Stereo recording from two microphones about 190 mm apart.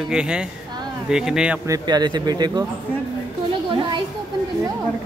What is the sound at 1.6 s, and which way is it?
Speech, 20° right (ahead or behind).